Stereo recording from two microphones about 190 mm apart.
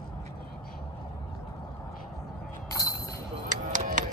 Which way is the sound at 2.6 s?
15° left (ahead or behind).